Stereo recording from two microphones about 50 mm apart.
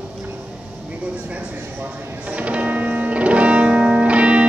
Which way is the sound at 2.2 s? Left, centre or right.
Right.